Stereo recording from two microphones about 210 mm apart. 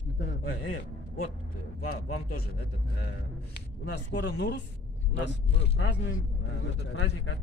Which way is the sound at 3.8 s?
55° left (ahead or behind).